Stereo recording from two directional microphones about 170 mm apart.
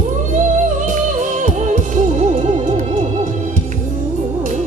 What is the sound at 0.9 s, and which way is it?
Music, 50° right (ahead or behind).